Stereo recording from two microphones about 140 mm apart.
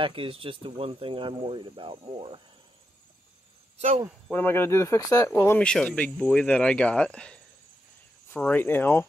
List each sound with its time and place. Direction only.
0.0 s speech: 40° right (ahead or behind)
3.7 s speech: 50° right (ahead or behind)
4.3 s speech: 15° left (ahead or behind)
8.4 s speech: 10° left (ahead or behind)